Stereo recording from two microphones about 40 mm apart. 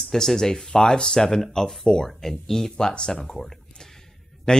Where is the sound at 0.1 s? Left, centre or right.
Centre.